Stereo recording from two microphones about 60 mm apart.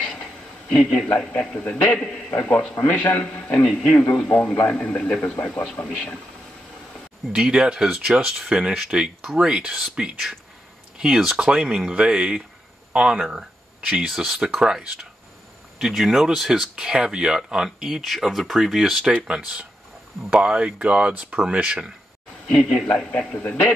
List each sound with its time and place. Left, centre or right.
0.0 s a sound: centre
1.2 s a man's voice: centre
1.5 s speech: left
2.0 s a man's voice: centre
7.3 s speech: centre
22.5 s a man's voice: centre
22.9 s speech: left